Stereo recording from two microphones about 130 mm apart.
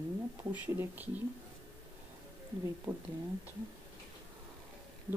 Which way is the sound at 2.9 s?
10° right (ahead or behind).